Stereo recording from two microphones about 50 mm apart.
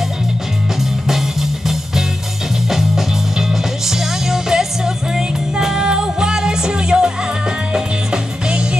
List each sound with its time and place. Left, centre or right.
1.0 s music: centre